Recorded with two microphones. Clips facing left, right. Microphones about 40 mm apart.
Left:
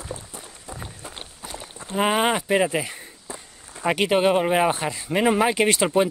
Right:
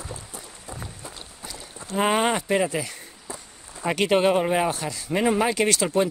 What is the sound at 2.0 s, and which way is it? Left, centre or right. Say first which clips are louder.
Speech: left 1 dB; centre.